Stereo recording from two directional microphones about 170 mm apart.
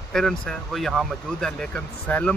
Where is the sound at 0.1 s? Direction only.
5° left (ahead or behind).